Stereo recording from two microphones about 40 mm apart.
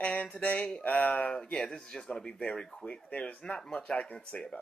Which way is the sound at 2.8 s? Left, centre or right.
Left.